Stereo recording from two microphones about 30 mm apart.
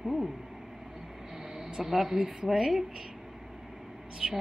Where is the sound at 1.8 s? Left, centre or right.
Centre.